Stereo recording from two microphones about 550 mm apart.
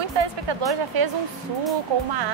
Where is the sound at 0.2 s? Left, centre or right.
Right.